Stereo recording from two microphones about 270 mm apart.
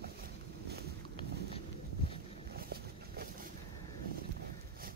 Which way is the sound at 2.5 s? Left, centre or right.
Right.